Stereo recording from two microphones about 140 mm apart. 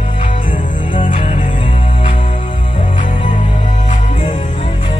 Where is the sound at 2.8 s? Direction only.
65° left (ahead or behind).